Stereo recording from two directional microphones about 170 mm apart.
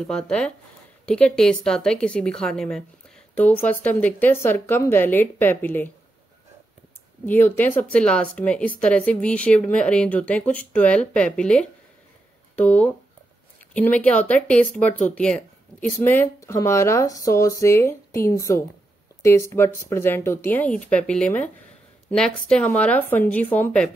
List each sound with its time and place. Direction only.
0.0 s a woman's voice: 5° left (ahead or behind)
7.2 s speech: 10° left (ahead or behind)